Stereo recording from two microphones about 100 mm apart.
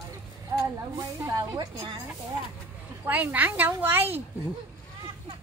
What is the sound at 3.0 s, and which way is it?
A woman's voice, 15° right (ahead or behind).